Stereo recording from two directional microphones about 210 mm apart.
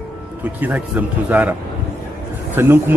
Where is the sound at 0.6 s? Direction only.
10° right (ahead or behind).